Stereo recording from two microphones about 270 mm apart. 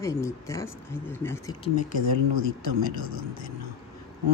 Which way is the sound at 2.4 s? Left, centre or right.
Left.